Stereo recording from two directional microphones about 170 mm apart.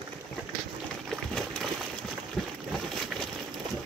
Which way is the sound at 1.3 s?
5° left (ahead or behind).